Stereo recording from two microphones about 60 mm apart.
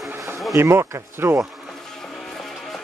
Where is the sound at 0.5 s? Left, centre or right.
Right.